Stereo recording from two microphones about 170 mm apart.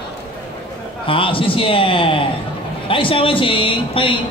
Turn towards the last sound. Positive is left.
turn(degrees=30)  # may be behind; listen again after turning